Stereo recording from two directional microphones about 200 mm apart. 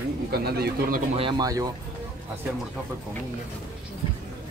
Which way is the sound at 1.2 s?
20° right (ahead or behind).